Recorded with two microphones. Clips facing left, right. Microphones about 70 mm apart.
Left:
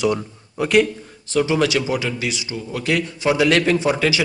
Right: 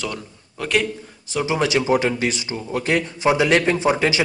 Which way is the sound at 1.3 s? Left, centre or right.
Centre.